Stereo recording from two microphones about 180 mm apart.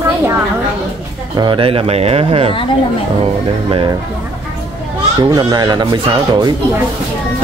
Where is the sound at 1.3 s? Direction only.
25° right (ahead or behind).